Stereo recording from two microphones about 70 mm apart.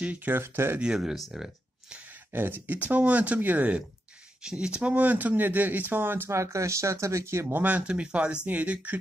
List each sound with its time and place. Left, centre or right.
0.0 s speech: right
0.4 s speech: right
0.7 s speech: centre
2.3 s speech: right
4.4 s speech: centre; by 7.4 s right
7.4 s speech: right